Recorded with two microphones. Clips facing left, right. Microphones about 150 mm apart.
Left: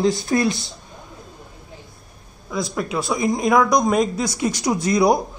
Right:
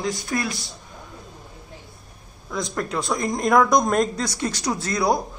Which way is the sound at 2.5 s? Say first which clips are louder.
Left 2 dB; 5° left (ahead or behind).